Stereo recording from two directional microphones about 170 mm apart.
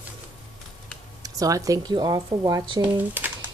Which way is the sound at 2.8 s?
10° right (ahead or behind).